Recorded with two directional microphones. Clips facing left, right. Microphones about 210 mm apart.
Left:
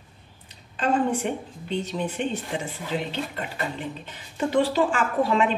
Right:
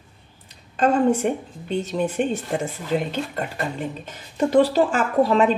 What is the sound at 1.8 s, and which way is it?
A woman's voice, 45° right (ahead or behind).